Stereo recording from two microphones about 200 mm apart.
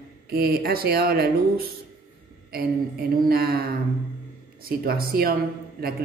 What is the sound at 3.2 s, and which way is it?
A woman's voice, 50° right (ahead or behind).